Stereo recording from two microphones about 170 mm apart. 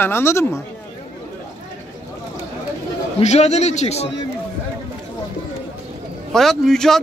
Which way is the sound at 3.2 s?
40° left (ahead or behind).